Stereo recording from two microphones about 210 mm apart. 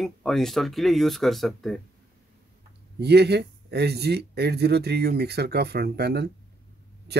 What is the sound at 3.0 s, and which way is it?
Speech, 50° right (ahead or behind).